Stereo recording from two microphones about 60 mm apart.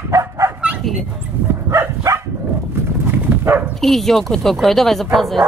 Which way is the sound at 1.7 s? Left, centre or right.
Right.